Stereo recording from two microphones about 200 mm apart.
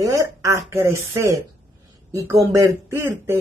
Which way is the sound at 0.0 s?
15° right (ahead or behind).